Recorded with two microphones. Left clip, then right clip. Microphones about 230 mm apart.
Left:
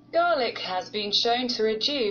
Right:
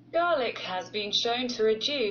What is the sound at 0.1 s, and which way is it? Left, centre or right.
A woman's voice, left.